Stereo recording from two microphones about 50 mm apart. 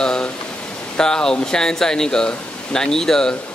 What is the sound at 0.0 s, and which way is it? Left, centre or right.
Pink noise, centre.